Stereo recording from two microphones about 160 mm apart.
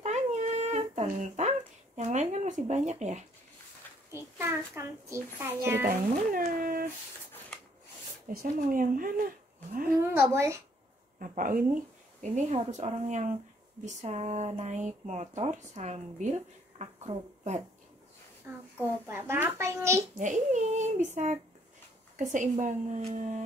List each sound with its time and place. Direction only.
0.0 s a sound: 45° right (ahead or behind)
4.1 s a child's voice: 15° right (ahead or behind)
5.9 s speech: 60° right (ahead or behind)
8.3 s speech: 60° right (ahead or behind)
10.1 s a child's voice: 15° right (ahead or behind)
11.1 s speech: 60° right (ahead or behind); by 17.6 s 40° right (ahead or behind)
18.8 s a child's voice: 15° right (ahead or behind)
20.2 s speech: 50° right (ahead or behind)